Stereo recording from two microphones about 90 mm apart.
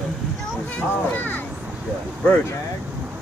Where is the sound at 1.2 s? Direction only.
20° left (ahead or behind).